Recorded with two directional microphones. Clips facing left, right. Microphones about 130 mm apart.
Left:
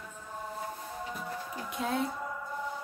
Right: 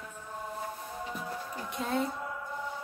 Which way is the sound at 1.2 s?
Centre (ahead or behind).